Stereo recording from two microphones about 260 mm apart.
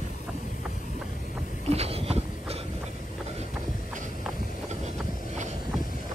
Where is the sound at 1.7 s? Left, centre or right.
Right.